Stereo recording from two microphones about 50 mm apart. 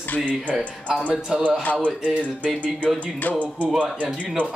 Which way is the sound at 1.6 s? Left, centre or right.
Left.